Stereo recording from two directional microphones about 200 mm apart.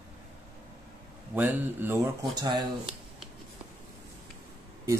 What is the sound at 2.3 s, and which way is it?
Speech, 20° right (ahead or behind).